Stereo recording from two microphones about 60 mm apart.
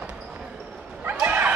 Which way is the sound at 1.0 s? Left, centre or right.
Right.